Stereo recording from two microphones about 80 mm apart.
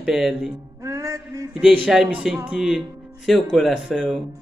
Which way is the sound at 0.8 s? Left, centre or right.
Right.